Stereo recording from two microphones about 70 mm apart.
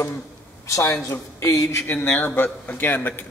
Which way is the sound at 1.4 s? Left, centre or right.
Left.